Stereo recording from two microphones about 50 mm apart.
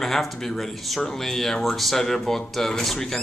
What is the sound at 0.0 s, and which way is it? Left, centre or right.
A man's voice, centre.